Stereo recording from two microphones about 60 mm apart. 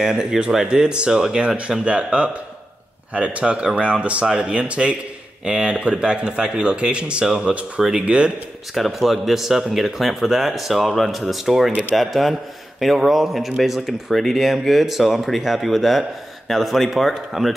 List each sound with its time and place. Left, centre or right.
0.0 s speech: centre
8.7 s speech: centre